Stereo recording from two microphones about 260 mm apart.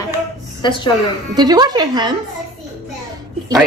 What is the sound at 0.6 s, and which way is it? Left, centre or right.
Speech, centre.